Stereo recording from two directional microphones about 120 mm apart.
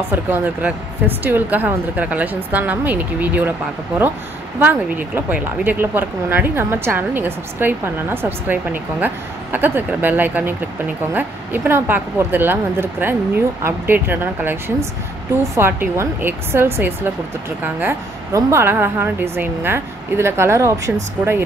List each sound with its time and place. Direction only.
0.1 s speech: 15° right (ahead or behind)
4.6 s a woman's voice: 15° right (ahead or behind)
18.3 s a woman's voice: 20° right (ahead or behind)